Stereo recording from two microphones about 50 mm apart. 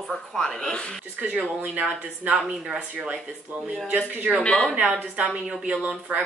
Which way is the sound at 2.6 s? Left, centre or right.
Centre.